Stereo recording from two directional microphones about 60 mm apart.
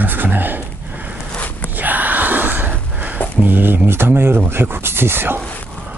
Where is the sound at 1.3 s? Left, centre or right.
Left.